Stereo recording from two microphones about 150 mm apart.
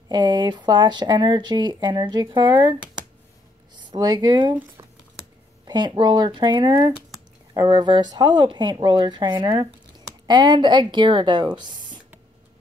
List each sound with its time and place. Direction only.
0.1 s speech: 30° right (ahead or behind)
3.7 s speech: 30° right (ahead or behind)
5.7 s speech: 30° right (ahead or behind)